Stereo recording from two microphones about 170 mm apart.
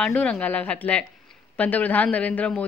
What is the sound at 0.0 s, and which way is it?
A man's voice, 5° left (ahead or behind).